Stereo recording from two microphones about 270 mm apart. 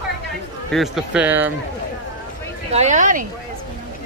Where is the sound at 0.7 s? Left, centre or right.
Centre.